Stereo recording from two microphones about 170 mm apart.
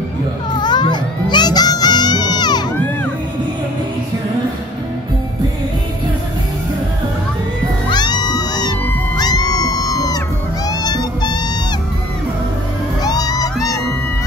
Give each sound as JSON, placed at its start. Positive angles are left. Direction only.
{"t": 0.6, "sound": "music", "side_deg": 25}
{"t": 2.7, "sound": "music", "side_deg": 10}
{"t": 7.9, "sound": "cat", "side_deg": 25}
{"t": 10.7, "sound": "music", "side_deg": 25}
{"t": 13.0, "sound": "music", "side_deg": 25}